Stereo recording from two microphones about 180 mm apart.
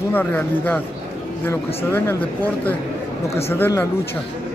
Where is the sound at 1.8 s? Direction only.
10° left (ahead or behind).